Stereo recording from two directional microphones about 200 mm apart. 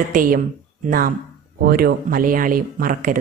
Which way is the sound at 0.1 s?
45° right (ahead or behind).